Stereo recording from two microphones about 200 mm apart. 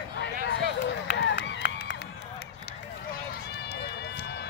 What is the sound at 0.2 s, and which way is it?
Run, 60° left (ahead or behind).